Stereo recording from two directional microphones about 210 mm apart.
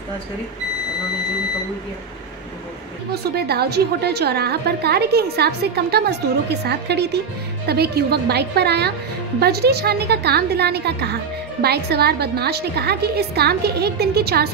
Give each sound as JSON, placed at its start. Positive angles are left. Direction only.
{"t": 3.3, "sound": "a woman's voice", "side_deg": -50}